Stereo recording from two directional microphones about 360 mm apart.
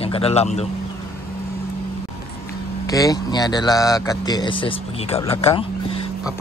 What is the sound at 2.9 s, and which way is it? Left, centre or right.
Speech, centre.